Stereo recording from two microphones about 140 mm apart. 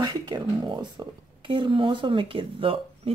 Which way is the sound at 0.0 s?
30° right (ahead or behind).